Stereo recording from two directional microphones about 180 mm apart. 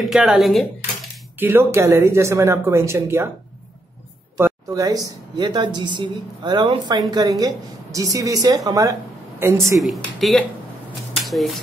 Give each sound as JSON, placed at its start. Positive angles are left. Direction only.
{"t": 0.0, "sound": "speech", "side_deg": -5}
{"t": 1.4, "sound": "speech", "side_deg": -10}
{"t": 4.4, "sound": "speech", "side_deg": -15}
{"t": 9.8, "sound": "speech", "side_deg": 0}